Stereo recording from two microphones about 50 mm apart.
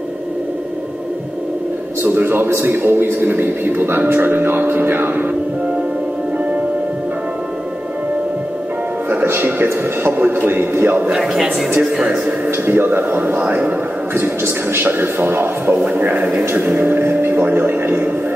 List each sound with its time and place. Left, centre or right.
2.0 s a man's voice: right
9.2 s a man's voice: right
11.1 s speech: centre
12.4 s speech: right
14.4 s a man's voice: right
15.7 s a man's voice: right